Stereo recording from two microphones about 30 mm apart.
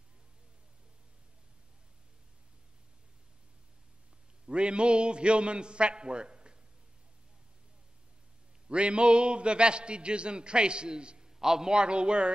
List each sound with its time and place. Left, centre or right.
4.5 s a man's voice: right
8.6 s a man's voice: right
11.2 s a sound: centre
11.7 s a man's voice: right